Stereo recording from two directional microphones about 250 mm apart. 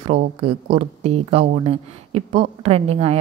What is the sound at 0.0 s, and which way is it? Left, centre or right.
Speech, right.